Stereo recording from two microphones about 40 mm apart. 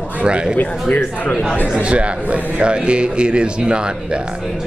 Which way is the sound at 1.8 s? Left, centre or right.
Right.